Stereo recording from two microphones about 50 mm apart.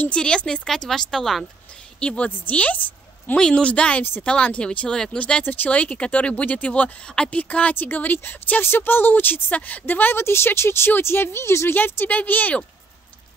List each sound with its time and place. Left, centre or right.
0.1 s speech: centre
0.7 s speech: centre
2.0 s a woman's voice: left
3.3 s speech: centre
5.4 s speech: left
5.7 s speech: left
10.2 s speech: left
11.7 s speech: left